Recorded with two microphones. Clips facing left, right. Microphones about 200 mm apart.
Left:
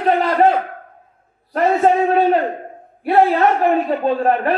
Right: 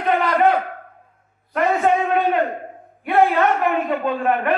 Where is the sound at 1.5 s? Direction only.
35° left (ahead or behind).